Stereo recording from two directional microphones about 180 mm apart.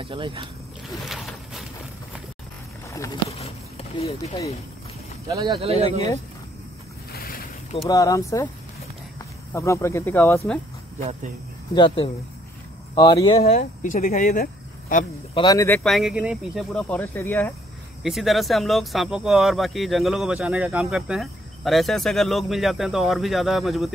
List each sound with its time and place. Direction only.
0.0 s speech: 30° right (ahead or behind)
1.0 s boat: centre (ahead or behind)
3.3 s a sound: 35° left (ahead or behind)
5.3 s speech: 25° right (ahead or behind)
7.1 s a sound: 55° left (ahead or behind)
7.9 s speech: 20° left (ahead or behind)
9.5 s speech: 15° left (ahead or behind)
11.7 s speech: 30° left (ahead or behind)
13.6 s speech: 50° left (ahead or behind)
15.3 s speech: 20° left (ahead or behind)
15.8 s speech: centre (ahead or behind)
16.7 s speech: 10° left (ahead or behind)
18.0 s speech: centre (ahead or behind)